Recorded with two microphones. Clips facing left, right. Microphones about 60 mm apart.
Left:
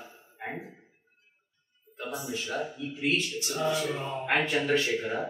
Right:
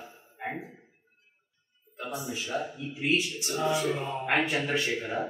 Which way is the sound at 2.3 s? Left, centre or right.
Centre.